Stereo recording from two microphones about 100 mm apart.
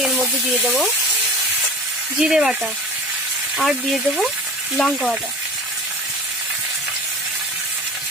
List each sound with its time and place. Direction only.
2.1 s speech: 5° right (ahead or behind)